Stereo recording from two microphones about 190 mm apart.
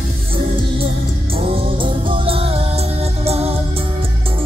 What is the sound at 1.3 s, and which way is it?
Music, 30° right (ahead or behind).